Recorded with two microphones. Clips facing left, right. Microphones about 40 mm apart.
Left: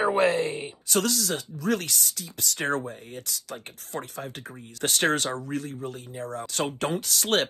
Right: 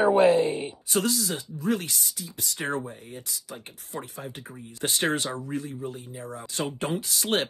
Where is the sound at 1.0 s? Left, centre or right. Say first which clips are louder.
Even; right.